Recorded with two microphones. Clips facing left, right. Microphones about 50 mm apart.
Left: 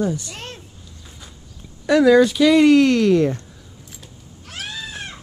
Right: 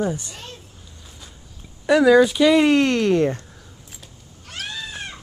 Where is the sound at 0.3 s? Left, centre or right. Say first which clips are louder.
Left 4 dB; left.